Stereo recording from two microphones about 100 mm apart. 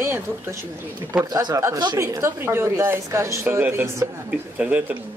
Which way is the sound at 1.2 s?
40° right (ahead or behind).